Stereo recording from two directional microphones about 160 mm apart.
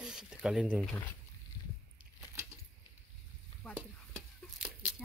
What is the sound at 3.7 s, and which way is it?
Stir, 10° right (ahead or behind).